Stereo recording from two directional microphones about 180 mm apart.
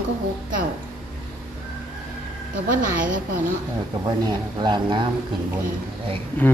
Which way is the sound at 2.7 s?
50° right (ahead or behind).